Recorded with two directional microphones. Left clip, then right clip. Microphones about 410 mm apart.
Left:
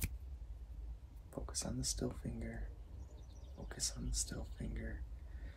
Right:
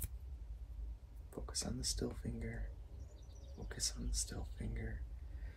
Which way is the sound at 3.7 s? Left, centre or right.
Centre.